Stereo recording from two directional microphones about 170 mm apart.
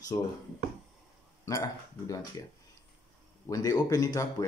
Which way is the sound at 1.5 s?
20° left (ahead or behind).